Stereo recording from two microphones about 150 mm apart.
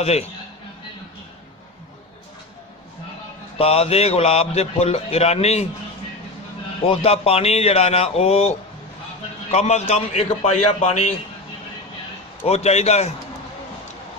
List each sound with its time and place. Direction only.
3.5 s a man's voice: 40° left (ahead or behind)
6.9 s a man's voice: 40° left (ahead or behind)
12.4 s a man's voice: 45° left (ahead or behind)